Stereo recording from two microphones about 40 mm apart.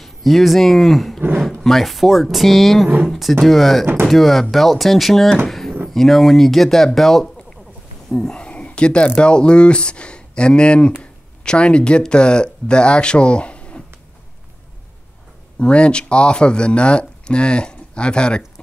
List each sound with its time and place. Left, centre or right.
0.0 s speech: centre
5.5 s drawer open or close: centre
5.9 s speech: centre
8.1 s speech: left
15.6 s speech: left